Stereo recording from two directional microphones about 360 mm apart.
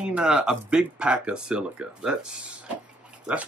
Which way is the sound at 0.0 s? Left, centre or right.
Centre.